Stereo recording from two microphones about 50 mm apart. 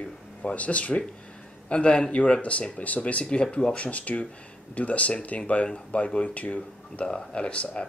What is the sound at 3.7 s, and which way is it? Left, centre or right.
Speech, left.